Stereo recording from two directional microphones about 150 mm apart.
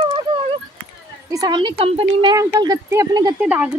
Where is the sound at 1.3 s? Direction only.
25° right (ahead or behind).